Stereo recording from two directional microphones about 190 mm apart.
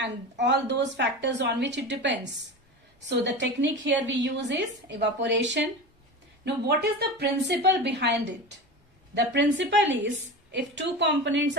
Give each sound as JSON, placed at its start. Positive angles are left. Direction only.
{"t": 0.0, "sound": "a woman's voice", "side_deg": -70}
{"t": 6.4, "sound": "a woman's voice", "side_deg": -60}